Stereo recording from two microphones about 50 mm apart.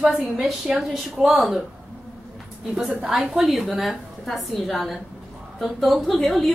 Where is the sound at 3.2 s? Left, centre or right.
Centre.